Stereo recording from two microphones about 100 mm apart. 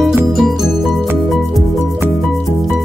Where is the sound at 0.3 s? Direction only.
Centre (ahead or behind).